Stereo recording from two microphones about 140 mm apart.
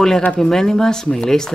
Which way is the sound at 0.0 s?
5° left (ahead or behind).